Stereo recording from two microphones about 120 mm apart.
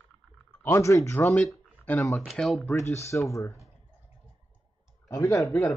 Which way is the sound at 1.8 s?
20° left (ahead or behind).